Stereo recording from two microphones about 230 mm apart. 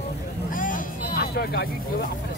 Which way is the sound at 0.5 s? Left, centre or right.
Left.